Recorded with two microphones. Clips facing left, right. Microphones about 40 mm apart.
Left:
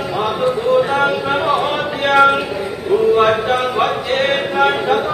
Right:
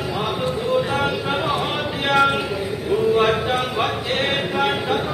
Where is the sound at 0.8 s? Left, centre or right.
Centre.